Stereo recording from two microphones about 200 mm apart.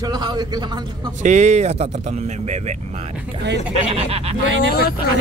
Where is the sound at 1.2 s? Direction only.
35° right (ahead or behind).